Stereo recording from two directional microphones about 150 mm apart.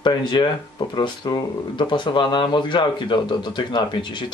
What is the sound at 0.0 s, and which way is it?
Speech, 30° left (ahead or behind).